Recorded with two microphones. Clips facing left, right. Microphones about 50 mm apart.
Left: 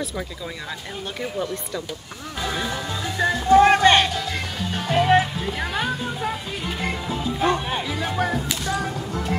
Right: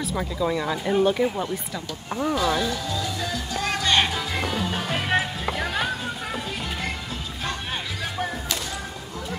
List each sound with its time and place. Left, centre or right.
0.1 s speech: centre
2.3 s speech: centre
3.2 s music: left
4.6 s music: centre